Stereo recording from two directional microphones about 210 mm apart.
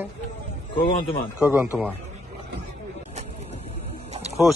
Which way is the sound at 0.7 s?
25° left (ahead or behind).